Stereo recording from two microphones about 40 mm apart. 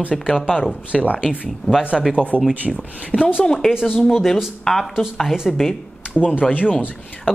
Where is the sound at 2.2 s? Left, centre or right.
Left.